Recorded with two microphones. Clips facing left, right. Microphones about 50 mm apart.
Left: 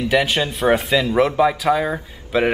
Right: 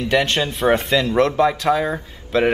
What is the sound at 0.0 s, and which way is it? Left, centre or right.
A man's voice, centre.